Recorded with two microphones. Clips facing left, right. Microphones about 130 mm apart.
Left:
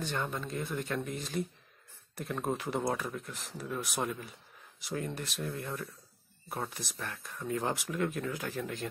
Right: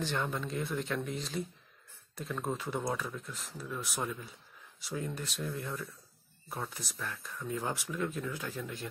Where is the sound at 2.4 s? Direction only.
15° left (ahead or behind).